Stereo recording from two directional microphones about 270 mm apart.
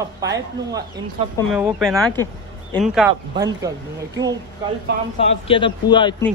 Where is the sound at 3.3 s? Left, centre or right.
Centre.